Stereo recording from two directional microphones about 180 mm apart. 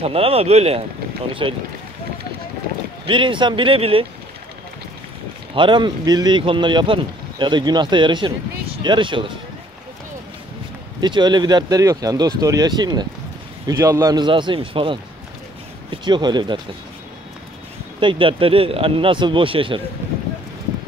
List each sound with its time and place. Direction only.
0.0 s speech: 35° right (ahead or behind)
3.1 s speech: 30° right (ahead or behind)
5.5 s speech: 25° right (ahead or behind)
11.0 s speech: 25° right (ahead or behind)
18.0 s speech: 30° right (ahead or behind)